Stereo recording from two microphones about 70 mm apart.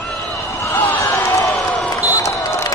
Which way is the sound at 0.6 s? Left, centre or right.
Left.